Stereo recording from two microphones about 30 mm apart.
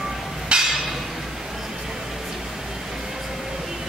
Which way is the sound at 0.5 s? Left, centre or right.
Right.